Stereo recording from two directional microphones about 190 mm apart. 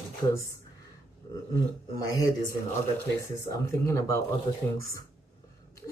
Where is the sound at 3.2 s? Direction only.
15° left (ahead or behind).